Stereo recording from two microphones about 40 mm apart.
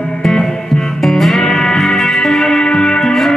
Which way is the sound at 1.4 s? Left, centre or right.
Centre.